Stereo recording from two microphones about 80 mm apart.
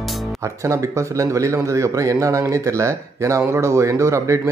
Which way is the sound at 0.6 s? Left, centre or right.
Right.